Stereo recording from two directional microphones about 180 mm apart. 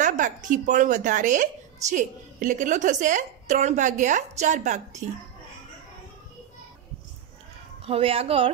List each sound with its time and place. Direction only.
0.0 s a woman's voice: 45° right (ahead or behind)
7.8 s a woman's voice: 30° right (ahead or behind)